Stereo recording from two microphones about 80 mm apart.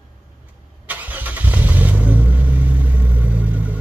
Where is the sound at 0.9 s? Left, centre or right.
Right.